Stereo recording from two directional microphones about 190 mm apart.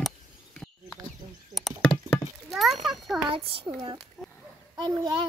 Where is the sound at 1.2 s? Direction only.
35° right (ahead or behind).